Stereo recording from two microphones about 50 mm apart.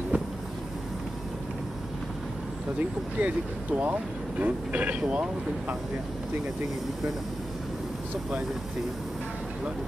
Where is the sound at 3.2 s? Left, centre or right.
Right.